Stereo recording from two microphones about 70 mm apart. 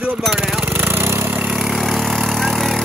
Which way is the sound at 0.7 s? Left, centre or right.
Right.